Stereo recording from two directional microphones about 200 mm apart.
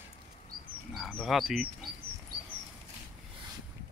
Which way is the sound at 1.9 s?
50° right (ahead or behind).